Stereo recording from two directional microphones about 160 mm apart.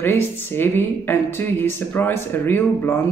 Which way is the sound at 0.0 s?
15° left (ahead or behind).